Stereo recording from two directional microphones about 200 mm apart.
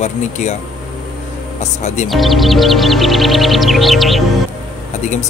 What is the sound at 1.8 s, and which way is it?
Speech, 35° left (ahead or behind).